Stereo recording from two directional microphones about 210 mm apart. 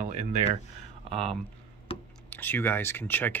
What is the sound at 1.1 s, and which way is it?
Speech, 5° left (ahead or behind).